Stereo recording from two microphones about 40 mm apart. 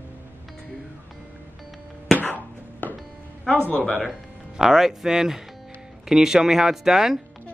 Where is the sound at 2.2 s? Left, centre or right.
Left.